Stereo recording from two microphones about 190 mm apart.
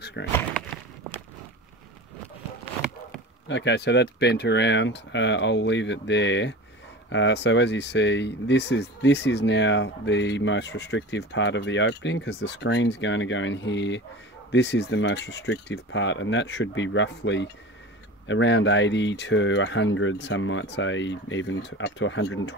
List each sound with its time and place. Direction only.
0.0 s speech: 65° left (ahead or behind)
3.4 s speech: 70° left (ahead or behind)